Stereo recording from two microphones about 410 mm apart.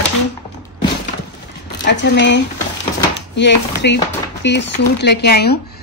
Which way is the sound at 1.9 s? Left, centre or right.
Left.